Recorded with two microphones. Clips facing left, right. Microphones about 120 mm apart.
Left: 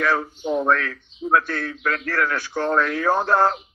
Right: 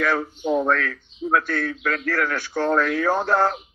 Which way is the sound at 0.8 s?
40° left (ahead or behind).